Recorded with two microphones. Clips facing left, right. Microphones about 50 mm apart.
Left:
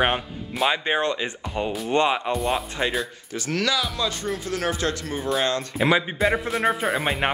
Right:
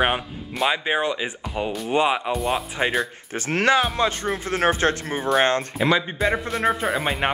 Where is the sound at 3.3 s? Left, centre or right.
Right.